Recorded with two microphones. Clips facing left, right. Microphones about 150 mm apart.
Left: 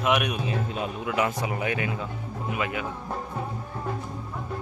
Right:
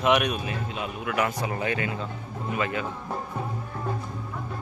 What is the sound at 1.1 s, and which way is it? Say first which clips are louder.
Speech: even; 20° left (ahead or behind).